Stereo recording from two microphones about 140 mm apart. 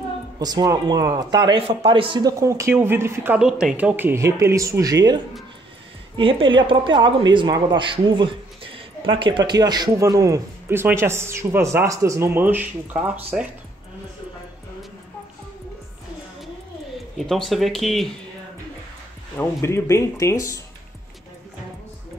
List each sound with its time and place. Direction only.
0.4 s speech: 30° right (ahead or behind)
3.3 s speech: 5° right (ahead or behind)
17.3 s speech: centre (ahead or behind)
19.3 s speech: 20° left (ahead or behind)